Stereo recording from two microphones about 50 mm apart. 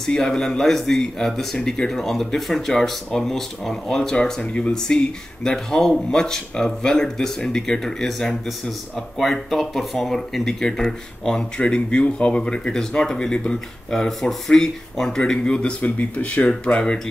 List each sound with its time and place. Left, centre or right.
0.0 s speech: centre